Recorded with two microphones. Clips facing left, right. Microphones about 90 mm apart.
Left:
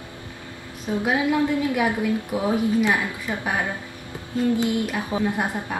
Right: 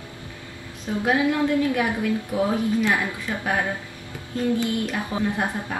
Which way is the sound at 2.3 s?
20° left (ahead or behind).